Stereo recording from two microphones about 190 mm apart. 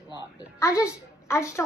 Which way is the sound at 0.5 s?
15° left (ahead or behind).